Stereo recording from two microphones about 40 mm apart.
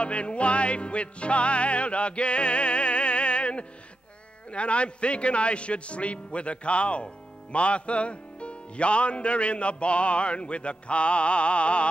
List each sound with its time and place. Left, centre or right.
0.0 s speech: left